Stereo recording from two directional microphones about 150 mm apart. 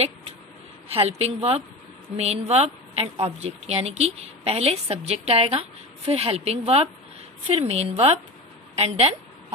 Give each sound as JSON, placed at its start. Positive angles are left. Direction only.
{"t": 0.9, "sound": "a woman's voice", "side_deg": -40}